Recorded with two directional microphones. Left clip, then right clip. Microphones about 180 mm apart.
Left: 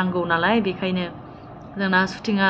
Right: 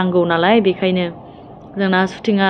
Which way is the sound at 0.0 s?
20° right (ahead or behind).